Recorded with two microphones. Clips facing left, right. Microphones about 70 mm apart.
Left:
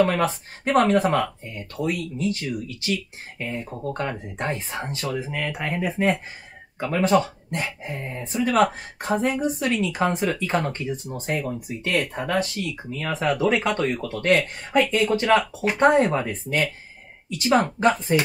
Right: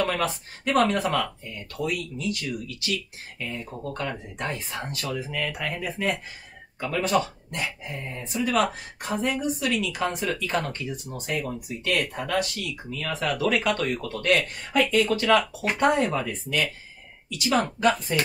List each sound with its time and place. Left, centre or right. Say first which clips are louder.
0.0 s speech: left 5 dB; left